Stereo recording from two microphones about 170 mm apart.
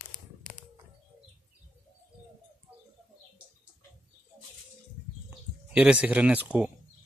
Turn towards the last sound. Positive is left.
turn(degrees=-5)  # may be behind; listen again after turning